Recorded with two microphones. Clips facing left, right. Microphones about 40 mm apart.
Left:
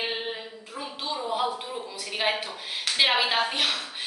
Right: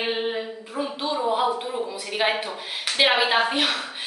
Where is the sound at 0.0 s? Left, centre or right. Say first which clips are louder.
Right 6 dB; centre.